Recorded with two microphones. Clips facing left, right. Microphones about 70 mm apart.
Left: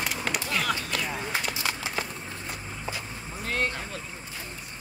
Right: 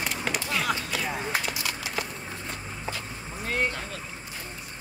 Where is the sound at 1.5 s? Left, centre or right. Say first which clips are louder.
Left 1 dB; left.